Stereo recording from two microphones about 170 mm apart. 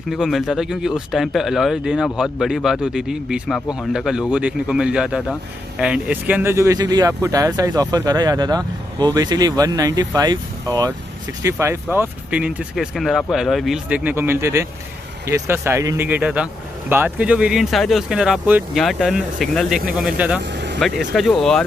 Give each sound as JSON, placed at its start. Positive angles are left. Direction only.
{"t": 0.1, "sound": "speech", "side_deg": 0}